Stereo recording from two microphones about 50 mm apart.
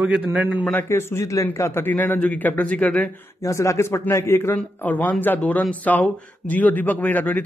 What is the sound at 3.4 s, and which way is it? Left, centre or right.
Speech, left.